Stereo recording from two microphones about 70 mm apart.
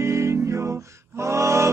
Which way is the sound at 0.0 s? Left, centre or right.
Right.